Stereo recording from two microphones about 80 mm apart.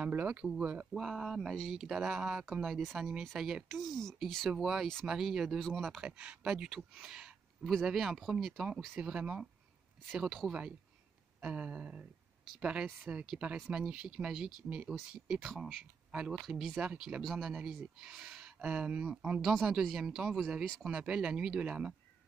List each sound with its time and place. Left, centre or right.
0.0 s speech: centre
0.9 s speech: centre
9.0 s speech: centre
11.4 s speech: centre